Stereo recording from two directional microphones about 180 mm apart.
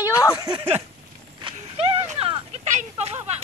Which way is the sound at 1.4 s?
35° right (ahead or behind).